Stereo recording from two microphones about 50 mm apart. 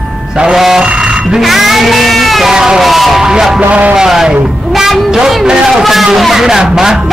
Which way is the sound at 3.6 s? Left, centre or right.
Right.